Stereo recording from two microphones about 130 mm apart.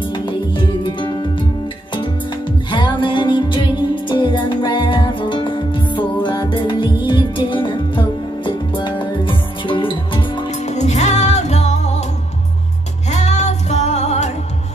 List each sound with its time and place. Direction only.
0.1 s music: 40° left (ahead or behind)
2.7 s music: 40° left (ahead or behind)
10.6 s music: 60° left (ahead or behind)
13.1 s music: 60° left (ahead or behind)